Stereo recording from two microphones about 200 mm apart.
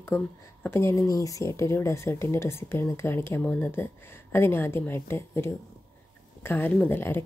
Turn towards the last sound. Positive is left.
turn(degrees=10)  # may be behind; listen again after turning